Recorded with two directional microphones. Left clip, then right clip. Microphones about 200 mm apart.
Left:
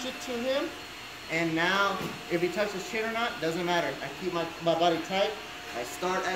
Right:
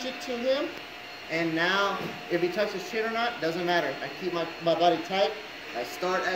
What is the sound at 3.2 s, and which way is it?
Speech, 10° left (ahead or behind).